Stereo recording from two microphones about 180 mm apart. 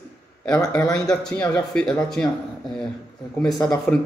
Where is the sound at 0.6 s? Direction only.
20° left (ahead or behind).